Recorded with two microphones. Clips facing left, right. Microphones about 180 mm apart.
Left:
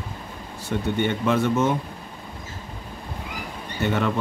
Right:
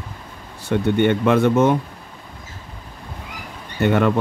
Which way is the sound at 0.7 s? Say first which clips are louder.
Right 7 dB; 65° right (ahead or behind).